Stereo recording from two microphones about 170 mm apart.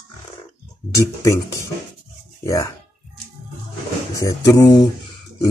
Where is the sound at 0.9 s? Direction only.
20° left (ahead or behind).